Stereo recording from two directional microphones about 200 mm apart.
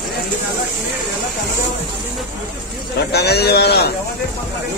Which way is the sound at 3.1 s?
55° left (ahead or behind).